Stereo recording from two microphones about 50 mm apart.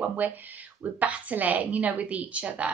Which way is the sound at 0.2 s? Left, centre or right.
Right.